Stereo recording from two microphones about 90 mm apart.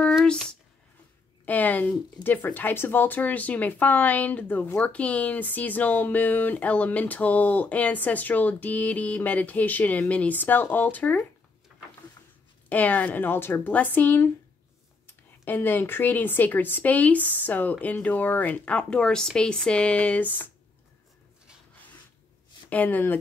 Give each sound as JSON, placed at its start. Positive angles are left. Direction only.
{"t": 0.2, "sound": "a sound", "side_deg": 10}
{"t": 1.4, "sound": "speech", "side_deg": 20}
{"t": 12.6, "sound": "speech", "side_deg": 20}
{"t": 22.7, "sound": "speech", "side_deg": 20}